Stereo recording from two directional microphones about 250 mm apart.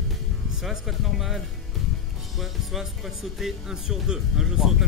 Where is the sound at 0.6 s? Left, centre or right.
Centre.